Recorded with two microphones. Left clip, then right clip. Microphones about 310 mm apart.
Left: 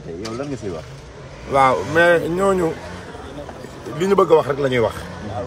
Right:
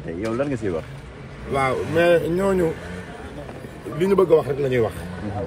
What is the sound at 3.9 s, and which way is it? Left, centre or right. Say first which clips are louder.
Speech: left 3 dB; centre.